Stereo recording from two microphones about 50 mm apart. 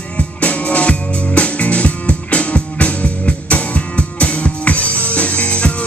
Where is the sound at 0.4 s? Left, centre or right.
Left.